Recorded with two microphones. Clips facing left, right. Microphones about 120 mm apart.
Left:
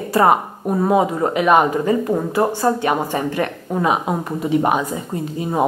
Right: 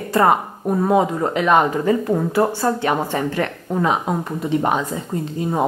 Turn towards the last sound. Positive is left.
turn(degrees=10)  # may be behind; listen again after turning